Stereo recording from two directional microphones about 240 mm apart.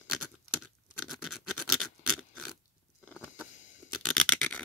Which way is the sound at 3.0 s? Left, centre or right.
Centre.